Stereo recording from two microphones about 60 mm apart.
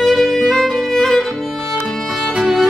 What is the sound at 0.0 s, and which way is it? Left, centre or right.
Music, centre.